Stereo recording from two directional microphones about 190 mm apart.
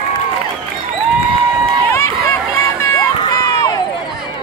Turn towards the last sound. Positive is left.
turn(degrees=20)  # may be behind; listen again after turning